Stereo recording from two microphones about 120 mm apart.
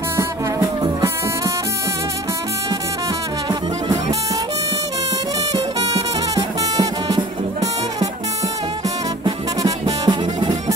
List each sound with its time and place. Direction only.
0.2 s music: 30° right (ahead or behind)
6.3 s music: 35° right (ahead or behind)
10.0 s music: 35° right (ahead or behind)